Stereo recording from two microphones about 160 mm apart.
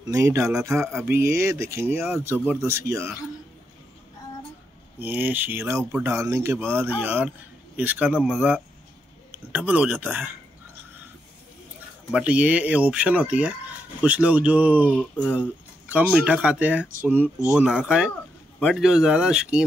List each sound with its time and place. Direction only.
0.1 s speech: 15° right (ahead or behind)
4.9 s speech: 10° right (ahead or behind)
9.3 s speech: 10° right (ahead or behind)
12.1 s speech: 5° right (ahead or behind)
14.9 s a sound: 10° left (ahead or behind)
15.9 s speech: 10° right (ahead or behind)